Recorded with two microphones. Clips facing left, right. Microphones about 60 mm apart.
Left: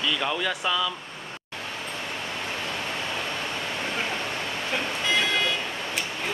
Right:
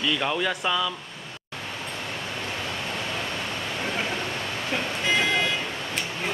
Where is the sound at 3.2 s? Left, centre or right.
Centre.